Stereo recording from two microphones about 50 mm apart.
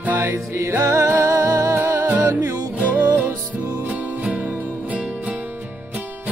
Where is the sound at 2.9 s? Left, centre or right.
Right.